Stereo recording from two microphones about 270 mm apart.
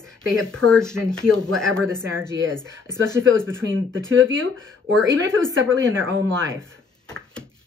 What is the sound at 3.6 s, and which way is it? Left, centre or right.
Speech, right.